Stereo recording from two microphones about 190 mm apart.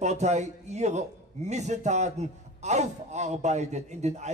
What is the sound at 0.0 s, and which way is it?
A man's voice, 35° right (ahead or behind).